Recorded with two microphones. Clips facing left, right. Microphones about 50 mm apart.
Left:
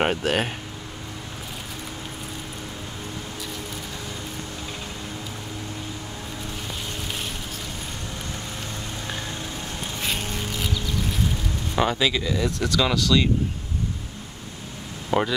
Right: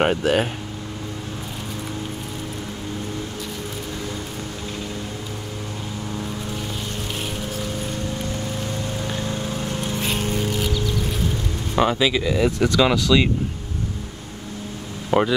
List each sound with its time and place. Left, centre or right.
0.0 s speech: centre
11.7 s speech: centre
15.0 s speech: centre